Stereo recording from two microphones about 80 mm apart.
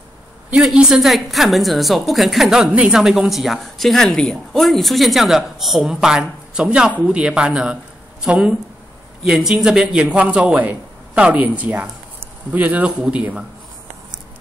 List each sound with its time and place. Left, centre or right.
0.6 s a man's voice: centre